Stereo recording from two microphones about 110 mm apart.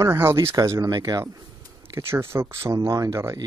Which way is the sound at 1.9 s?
25° right (ahead or behind).